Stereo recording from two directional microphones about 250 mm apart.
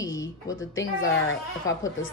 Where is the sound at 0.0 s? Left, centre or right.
Centre.